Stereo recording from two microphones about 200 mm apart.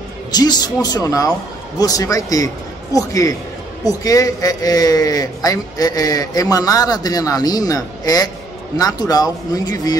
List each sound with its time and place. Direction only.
0.3 s a man's voice: 20° left (ahead or behind)